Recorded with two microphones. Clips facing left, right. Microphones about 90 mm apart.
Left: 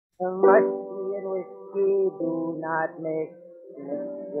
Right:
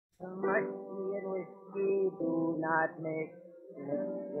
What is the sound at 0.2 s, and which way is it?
Speech, 55° left (ahead or behind).